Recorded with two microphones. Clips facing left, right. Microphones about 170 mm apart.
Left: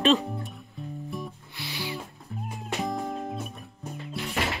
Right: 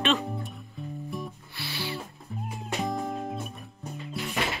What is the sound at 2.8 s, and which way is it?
Music, centre (ahead or behind).